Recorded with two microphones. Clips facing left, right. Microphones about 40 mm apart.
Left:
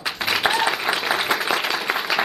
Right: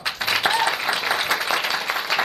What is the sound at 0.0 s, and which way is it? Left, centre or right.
Applause, centre.